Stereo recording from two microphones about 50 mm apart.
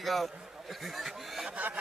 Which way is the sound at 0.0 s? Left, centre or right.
Centre.